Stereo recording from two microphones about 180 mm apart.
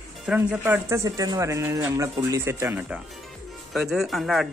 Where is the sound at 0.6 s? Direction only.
15° right (ahead or behind).